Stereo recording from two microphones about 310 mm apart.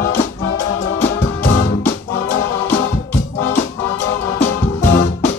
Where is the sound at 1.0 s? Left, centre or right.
Left.